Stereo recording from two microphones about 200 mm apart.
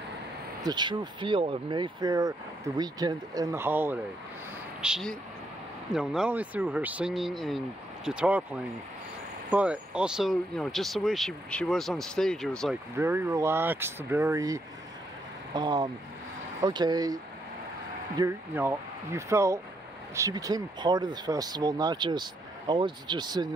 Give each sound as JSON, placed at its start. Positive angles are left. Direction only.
{"t": 0.7, "sound": "speech", "side_deg": -20}
{"t": 9.5, "sound": "speech", "side_deg": -5}
{"t": 12.9, "sound": "speech", "side_deg": -10}